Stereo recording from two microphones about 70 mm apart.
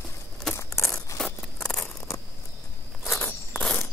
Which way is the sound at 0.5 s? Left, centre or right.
Left.